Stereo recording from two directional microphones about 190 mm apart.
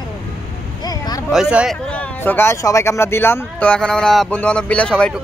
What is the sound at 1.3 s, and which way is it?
Speech, 5° right (ahead or behind).